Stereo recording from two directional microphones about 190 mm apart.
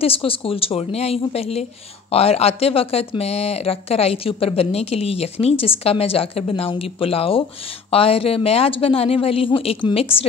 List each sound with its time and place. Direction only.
0.0 s a woman's voice: 30° left (ahead or behind)